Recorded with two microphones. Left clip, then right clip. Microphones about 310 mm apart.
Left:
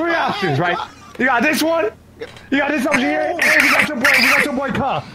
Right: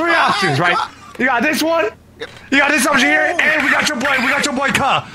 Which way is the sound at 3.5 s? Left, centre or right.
Centre.